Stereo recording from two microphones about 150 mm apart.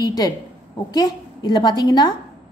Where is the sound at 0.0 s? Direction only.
25° left (ahead or behind).